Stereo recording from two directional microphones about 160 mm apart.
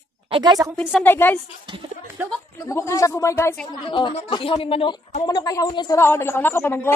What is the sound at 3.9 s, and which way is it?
Speech, 30° left (ahead or behind).